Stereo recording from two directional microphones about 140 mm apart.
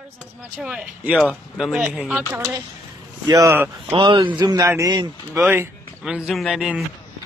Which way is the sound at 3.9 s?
40° right (ahead or behind).